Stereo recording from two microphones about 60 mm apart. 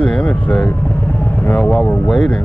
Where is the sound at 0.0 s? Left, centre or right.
Centre.